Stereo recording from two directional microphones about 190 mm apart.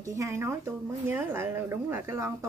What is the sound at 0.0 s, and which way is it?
A woman's voice, 15° right (ahead or behind).